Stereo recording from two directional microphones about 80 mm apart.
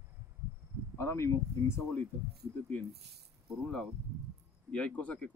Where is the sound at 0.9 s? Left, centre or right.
Left.